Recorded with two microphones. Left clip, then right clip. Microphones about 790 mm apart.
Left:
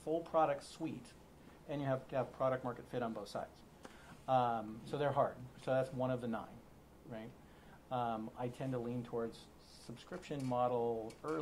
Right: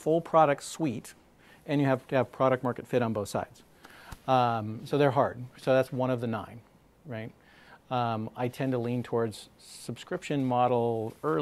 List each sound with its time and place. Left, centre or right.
0.0 s speech: right
7.9 s speech: right
9.8 s speech: right